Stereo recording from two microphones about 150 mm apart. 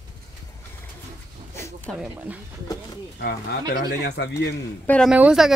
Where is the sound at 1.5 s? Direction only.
15° left (ahead or behind).